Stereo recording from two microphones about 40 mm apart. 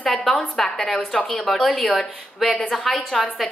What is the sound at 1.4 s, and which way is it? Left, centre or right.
A woman's voice, centre.